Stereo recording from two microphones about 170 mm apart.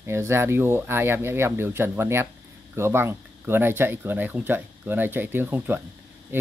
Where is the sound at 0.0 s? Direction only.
15° right (ahead or behind).